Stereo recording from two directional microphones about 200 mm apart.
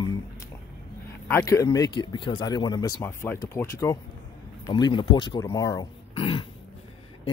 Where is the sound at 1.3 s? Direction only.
15° left (ahead or behind).